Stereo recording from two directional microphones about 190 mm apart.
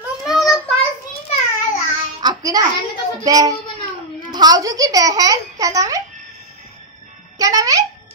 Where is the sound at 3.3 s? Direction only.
20° right (ahead or behind).